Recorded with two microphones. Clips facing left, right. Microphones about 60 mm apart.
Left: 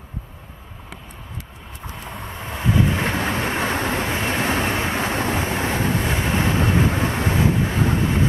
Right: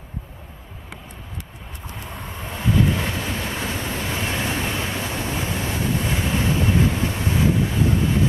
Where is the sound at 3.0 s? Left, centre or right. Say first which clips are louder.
Left 4 dB; left.